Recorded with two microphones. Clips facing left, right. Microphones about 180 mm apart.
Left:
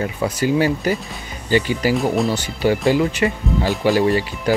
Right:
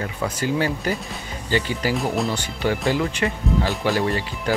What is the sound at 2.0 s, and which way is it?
Speech, centre (ahead or behind).